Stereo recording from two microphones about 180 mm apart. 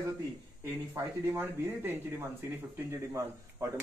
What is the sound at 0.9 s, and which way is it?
Speech, 15° right (ahead or behind).